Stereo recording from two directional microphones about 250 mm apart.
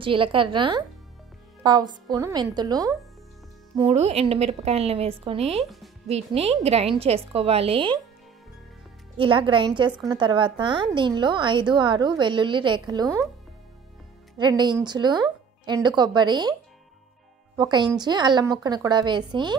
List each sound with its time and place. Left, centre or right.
0.0 s a woman's voice: right
5.6 s speech: centre
6.0 s a woman's voice: right
9.1 s a woman's voice: centre
14.4 s speech: centre
17.6 s speech: centre